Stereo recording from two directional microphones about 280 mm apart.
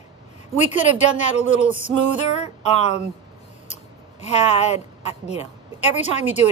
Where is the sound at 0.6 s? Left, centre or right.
Centre.